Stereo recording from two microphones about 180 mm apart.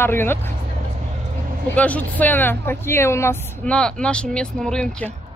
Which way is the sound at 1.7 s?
10° left (ahead or behind).